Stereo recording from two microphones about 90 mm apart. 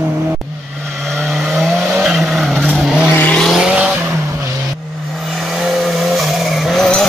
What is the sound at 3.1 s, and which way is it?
Vehicle, 20° left (ahead or behind).